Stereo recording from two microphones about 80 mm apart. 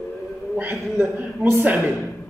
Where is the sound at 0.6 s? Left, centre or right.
Right.